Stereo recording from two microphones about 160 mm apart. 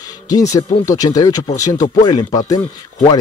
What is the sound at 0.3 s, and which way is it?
Speech, 20° left (ahead or behind).